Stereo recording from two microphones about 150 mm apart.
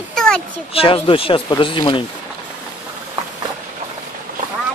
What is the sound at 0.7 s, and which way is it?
Speech, 35° left (ahead or behind).